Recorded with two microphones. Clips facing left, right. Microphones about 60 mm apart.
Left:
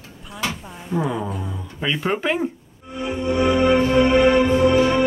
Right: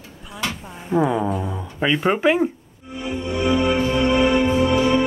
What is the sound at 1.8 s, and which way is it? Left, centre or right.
Speech, centre.